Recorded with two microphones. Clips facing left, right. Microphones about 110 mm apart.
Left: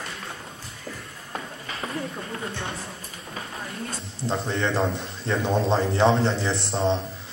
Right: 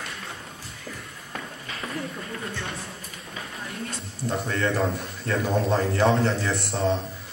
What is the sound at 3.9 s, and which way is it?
A man's voice, 25° left (ahead or behind).